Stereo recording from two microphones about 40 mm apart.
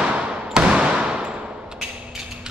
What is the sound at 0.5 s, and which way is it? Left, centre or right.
Basketball bounce, centre.